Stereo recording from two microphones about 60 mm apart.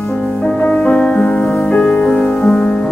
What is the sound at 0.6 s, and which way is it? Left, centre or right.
Music, left.